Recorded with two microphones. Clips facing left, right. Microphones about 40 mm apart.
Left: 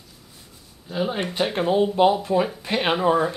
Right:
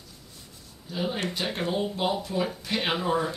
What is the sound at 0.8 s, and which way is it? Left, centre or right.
Speech, left.